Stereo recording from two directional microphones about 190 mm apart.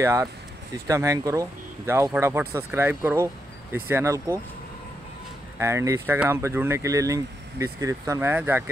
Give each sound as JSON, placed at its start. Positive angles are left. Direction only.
{"t": 0.0, "sound": "speech", "side_deg": -15}
{"t": 5.6, "sound": "speech", "side_deg": -15}